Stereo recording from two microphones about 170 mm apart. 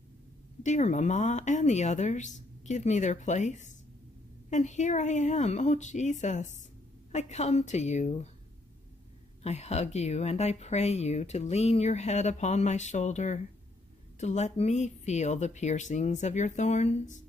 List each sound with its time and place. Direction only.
0.7 s speech: 45° left (ahead or behind)
9.4 s speech: 40° left (ahead or behind)